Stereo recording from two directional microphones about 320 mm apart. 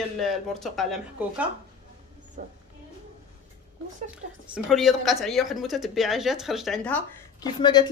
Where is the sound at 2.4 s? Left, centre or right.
Right.